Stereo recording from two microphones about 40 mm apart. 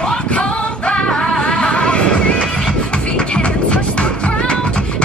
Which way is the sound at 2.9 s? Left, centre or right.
Left.